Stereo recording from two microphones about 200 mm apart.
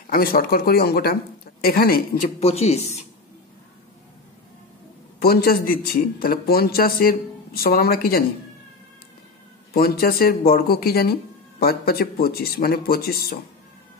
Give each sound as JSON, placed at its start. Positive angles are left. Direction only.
{"t": 0.0, "sound": "speech", "side_deg": 45}
{"t": 5.2, "sound": "speech", "side_deg": 50}
{"t": 9.8, "sound": "speech", "side_deg": 50}